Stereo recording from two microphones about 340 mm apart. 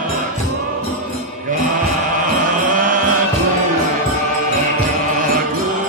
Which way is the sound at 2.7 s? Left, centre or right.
Right.